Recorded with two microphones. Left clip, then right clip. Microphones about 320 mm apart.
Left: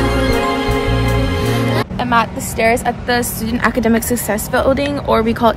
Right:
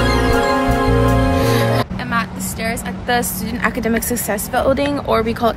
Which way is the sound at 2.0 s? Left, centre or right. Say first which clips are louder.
Left 6 dB; centre.